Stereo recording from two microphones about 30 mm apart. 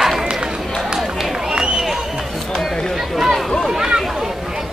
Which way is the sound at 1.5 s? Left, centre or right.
Right.